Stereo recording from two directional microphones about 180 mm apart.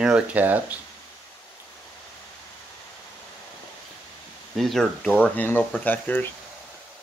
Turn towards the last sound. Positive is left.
turn(degrees=10)  # may be behind; listen again after turning